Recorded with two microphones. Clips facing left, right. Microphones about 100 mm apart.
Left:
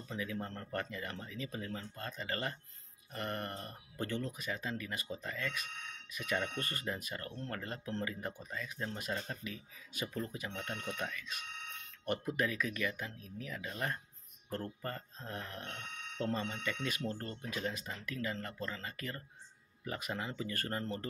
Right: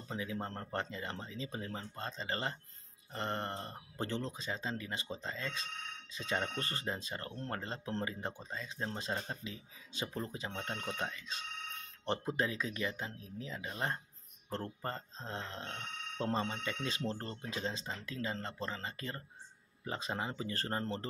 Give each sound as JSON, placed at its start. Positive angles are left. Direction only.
{"t": 0.1, "sound": "speech", "side_deg": -25}